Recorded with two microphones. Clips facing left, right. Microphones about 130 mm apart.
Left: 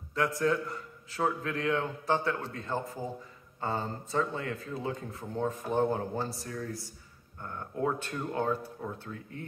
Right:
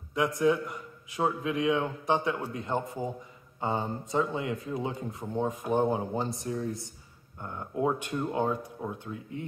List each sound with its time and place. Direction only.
0.1 s speech: 15° right (ahead or behind)